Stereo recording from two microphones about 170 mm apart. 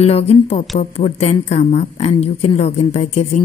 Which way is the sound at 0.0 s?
35° left (ahead or behind).